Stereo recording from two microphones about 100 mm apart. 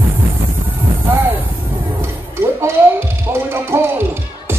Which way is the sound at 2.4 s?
25° right (ahead or behind).